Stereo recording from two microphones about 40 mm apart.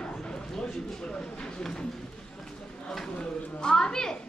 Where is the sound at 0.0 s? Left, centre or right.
Left.